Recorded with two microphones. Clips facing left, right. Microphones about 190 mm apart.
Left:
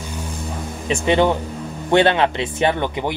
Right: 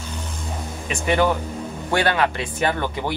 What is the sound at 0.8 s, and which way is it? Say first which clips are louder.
Speech: left 3 dB; 25° left (ahead or behind).